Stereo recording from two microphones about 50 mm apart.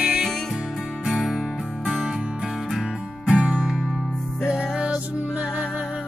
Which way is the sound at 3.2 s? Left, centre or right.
Right.